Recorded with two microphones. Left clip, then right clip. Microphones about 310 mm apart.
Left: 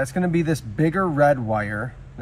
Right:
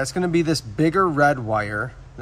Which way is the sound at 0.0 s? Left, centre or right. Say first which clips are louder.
Right 2 dB; centre.